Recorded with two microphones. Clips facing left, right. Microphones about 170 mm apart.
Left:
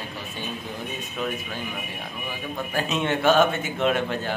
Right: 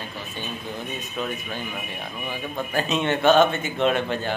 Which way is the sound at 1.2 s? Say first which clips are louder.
Even; 5° left (ahead or behind).